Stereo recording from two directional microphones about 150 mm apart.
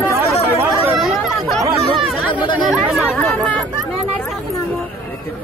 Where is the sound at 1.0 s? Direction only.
Centre (ahead or behind).